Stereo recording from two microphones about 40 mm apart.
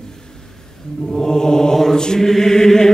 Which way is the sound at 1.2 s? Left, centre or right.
Centre.